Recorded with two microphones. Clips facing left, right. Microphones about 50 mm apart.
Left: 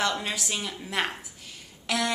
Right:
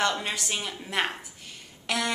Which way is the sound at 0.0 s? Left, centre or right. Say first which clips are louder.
Right 1 dB; centre.